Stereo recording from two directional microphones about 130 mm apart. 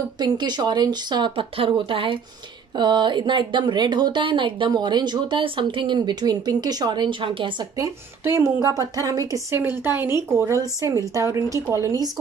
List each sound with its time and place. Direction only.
0.2 s a woman's voice: 35° right (ahead or behind)
7.7 s a woman's voice: 25° right (ahead or behind)